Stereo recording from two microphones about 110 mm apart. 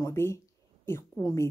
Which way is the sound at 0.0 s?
25° left (ahead or behind).